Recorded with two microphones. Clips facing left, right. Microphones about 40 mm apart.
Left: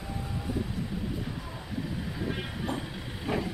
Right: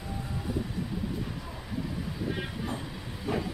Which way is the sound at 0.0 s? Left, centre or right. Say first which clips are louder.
Even; centre.